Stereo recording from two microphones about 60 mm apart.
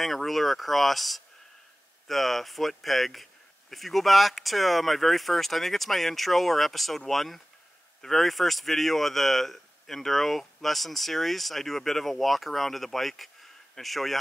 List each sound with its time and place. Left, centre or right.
0.0 s speech: centre